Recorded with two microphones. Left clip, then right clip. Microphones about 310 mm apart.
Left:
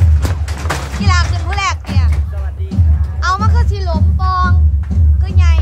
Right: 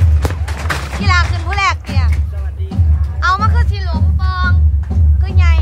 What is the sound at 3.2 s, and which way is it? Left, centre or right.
Speech, centre.